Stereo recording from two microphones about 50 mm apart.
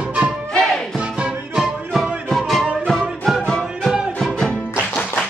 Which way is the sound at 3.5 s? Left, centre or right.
Centre.